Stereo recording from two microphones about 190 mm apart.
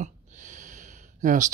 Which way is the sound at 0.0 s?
40° right (ahead or behind).